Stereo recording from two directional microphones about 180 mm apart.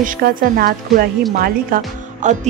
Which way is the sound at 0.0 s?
55° right (ahead or behind).